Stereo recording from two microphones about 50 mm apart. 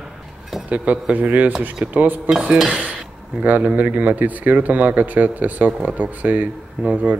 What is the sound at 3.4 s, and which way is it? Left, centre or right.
Speech, right.